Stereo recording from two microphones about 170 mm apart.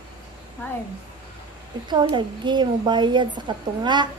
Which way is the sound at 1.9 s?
25° right (ahead or behind).